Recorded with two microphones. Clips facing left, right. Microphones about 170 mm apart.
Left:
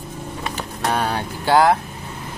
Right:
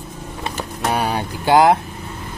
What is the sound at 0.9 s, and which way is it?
Speech, 10° right (ahead or behind).